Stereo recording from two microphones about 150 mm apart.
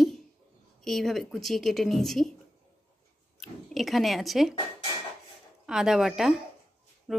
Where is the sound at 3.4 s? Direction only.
Centre (ahead or behind).